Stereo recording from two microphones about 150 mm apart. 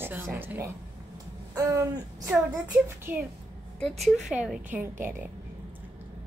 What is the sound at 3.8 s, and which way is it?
Speech, 45° right (ahead or behind).